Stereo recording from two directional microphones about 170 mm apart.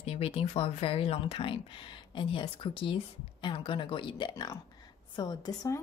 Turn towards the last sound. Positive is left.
turn(degrees=20)  # may be behind; listen again after turning